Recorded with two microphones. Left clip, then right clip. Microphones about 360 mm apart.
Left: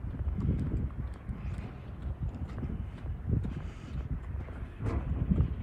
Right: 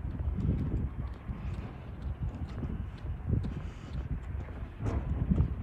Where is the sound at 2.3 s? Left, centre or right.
Centre.